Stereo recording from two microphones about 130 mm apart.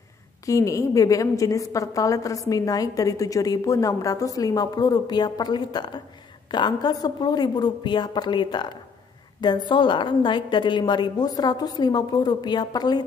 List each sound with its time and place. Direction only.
0.5 s a woman's voice: 25° left (ahead or behind)